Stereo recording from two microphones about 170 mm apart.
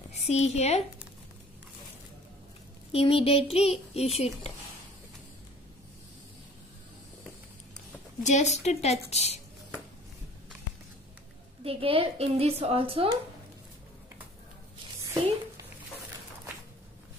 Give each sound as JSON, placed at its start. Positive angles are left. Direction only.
{"t": 0.3, "sound": "a child's voice", "side_deg": 40}
{"t": 2.9, "sound": "a child's voice", "side_deg": 35}
{"t": 8.2, "sound": "a child's voice", "side_deg": 45}
{"t": 11.6, "sound": "speech", "side_deg": -35}